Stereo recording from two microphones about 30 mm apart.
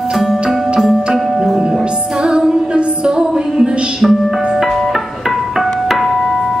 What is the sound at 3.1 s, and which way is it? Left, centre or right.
Music, right.